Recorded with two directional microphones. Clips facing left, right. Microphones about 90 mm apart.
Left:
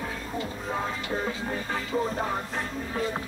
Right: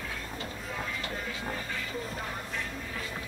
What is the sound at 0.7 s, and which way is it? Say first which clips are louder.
Music: left 6 dB; 40° left (ahead or behind).